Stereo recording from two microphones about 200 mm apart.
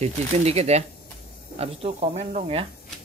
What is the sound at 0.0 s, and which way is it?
Speech, 30° right (ahead or behind).